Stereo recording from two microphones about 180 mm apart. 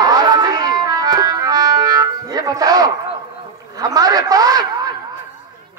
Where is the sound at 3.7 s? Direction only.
20° right (ahead or behind).